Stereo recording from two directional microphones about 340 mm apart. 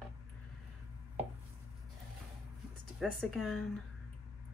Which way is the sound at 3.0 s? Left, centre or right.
Centre.